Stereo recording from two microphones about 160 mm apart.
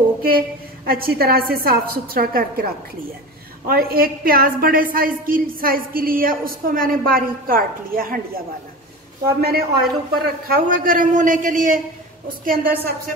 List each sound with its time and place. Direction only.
0.8 s a woman's voice: 65° right (ahead or behind)
3.6 s a woman's voice: 65° right (ahead or behind)
9.4 s a woman's voice: 75° right (ahead or behind)